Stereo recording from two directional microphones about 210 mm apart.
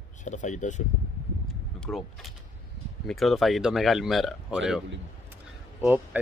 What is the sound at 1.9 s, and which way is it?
Speech, centre (ahead or behind).